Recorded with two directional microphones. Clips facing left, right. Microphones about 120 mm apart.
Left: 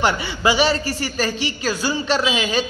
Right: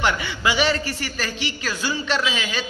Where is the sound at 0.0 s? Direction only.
35° left (ahead or behind).